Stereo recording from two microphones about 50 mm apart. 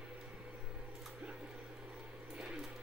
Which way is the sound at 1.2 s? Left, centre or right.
Centre.